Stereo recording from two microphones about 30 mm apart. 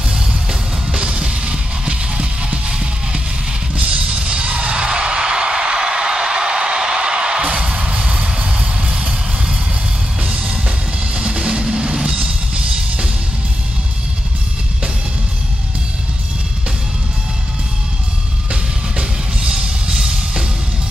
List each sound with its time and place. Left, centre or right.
0.1 s music: right
2.7 s music: right
4.8 s music: right
7.7 s music: right
10.3 s music: right
11.2 s music: right
19.4 s music: right
19.9 s music: centre